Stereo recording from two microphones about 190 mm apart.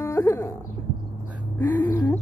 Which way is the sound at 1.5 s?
10° left (ahead or behind).